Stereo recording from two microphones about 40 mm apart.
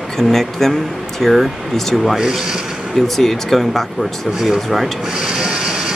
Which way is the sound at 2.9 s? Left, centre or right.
Centre.